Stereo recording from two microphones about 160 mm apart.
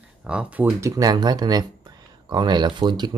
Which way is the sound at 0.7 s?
20° right (ahead or behind).